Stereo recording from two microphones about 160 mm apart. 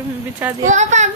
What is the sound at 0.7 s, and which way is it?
Speech, 45° right (ahead or behind).